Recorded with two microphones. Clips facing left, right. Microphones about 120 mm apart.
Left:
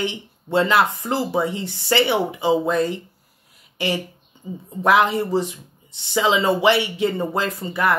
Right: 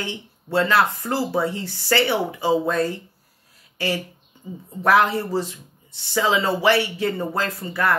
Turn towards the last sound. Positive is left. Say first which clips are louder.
# left 2 dB
turn(degrees=15)  # may be behind; listen again after turning